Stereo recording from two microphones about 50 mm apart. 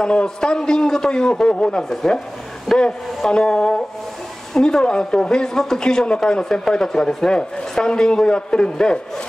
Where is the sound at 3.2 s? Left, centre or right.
Centre.